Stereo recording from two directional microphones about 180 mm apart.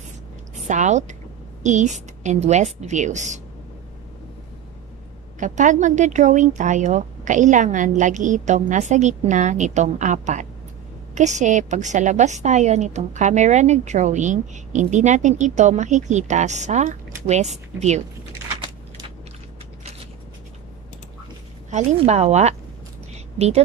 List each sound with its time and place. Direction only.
0.6 s a woman's voice: 40° right (ahead or behind)
5.4 s a woman's voice: 45° right (ahead or behind)
21.6 s a woman's voice: 40° right (ahead or behind)